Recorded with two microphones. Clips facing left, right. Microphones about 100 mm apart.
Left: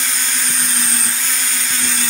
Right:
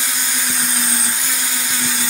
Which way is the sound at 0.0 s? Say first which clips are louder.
Even; 10° right (ahead or behind).